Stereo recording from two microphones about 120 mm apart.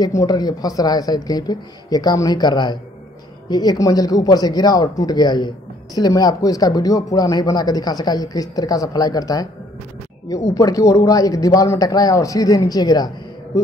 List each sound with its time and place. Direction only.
0.0 s speech: 30° left (ahead or behind)